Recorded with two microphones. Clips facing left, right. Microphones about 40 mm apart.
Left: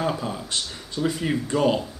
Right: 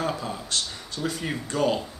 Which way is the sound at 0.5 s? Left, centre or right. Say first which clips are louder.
Even; centre.